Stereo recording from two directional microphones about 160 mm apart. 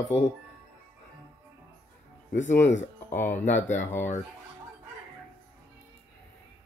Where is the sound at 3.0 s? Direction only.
15° left (ahead or behind).